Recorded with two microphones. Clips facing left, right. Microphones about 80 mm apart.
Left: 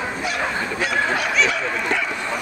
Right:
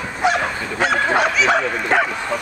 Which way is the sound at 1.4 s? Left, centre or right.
Right.